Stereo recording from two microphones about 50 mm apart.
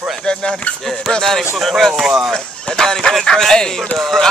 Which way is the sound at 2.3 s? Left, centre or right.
Centre.